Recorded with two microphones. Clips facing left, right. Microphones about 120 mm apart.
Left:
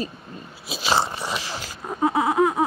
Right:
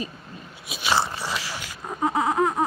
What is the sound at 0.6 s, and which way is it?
Biting, 30° left (ahead or behind).